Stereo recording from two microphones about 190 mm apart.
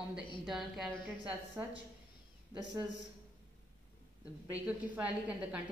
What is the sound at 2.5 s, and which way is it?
Speech, 20° right (ahead or behind).